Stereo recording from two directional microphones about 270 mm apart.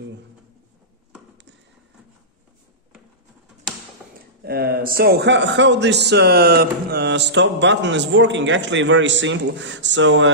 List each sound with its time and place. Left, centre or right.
4.4 s a man's voice: right